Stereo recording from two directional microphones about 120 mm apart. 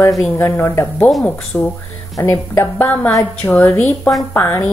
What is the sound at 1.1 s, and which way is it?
Speech, centre (ahead or behind).